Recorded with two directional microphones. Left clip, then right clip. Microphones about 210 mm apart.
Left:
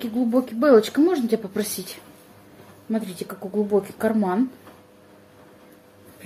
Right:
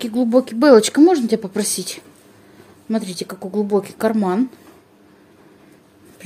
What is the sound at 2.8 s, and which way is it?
Speech, 50° right (ahead or behind).